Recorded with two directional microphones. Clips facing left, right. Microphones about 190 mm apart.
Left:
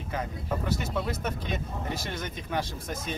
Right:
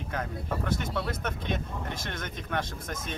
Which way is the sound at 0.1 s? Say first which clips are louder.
Left 2 dB; 5° left (ahead or behind).